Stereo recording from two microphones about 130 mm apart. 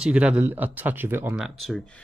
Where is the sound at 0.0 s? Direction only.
10° right (ahead or behind).